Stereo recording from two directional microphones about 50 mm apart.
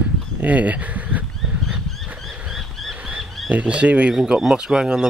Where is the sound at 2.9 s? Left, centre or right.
Right.